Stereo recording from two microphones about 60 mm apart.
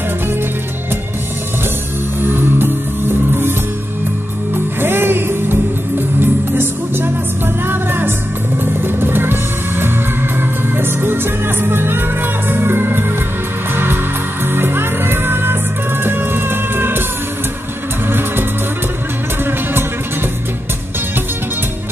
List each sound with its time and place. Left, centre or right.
2.2 s music: right
4.7 s music: right
14.5 s music: right